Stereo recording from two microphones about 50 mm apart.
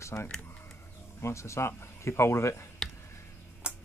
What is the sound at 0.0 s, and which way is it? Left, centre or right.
Speech, left.